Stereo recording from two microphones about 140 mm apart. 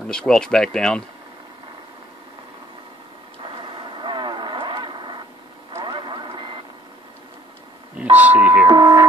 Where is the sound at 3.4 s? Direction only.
35° right (ahead or behind).